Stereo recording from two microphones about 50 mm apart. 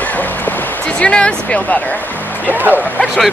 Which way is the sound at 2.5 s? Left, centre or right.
Right.